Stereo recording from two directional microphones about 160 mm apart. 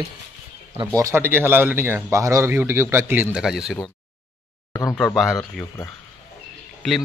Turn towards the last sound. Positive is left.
turn(degrees=0)  # may be behind; listen again after turning